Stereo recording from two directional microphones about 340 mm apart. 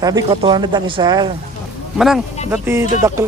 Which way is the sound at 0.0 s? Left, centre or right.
Centre.